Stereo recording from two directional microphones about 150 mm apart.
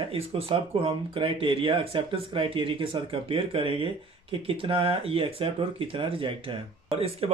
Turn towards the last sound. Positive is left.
turn(degrees=-40)  # may be behind; listen again after turning